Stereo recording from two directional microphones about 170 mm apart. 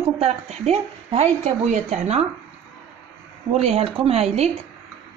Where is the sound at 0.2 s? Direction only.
40° right (ahead or behind).